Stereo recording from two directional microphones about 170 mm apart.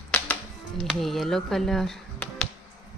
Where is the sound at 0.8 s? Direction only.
Centre (ahead or behind).